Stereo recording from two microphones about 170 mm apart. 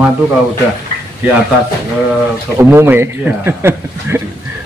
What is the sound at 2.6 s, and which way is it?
Speech, 15° right (ahead or behind).